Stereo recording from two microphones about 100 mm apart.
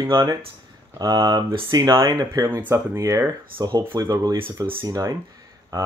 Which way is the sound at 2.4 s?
20° right (ahead or behind).